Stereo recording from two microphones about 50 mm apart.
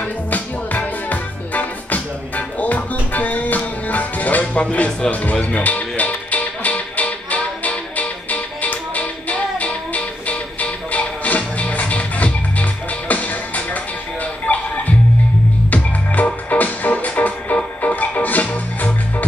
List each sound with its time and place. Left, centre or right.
0.0 s music: left